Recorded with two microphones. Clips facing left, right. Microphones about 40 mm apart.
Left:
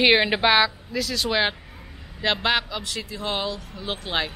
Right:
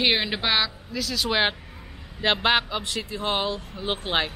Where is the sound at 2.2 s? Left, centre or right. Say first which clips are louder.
Right 1 dB; centre.